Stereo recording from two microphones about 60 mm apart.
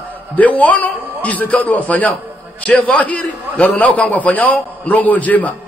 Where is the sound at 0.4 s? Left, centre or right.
Left.